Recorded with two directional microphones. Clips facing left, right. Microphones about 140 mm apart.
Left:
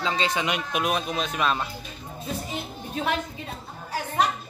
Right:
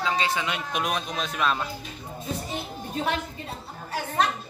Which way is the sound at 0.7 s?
5° left (ahead or behind).